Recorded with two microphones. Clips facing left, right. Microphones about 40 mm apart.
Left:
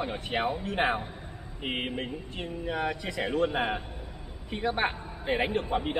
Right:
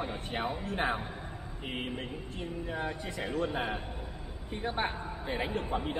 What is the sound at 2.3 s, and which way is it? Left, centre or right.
Speech, left.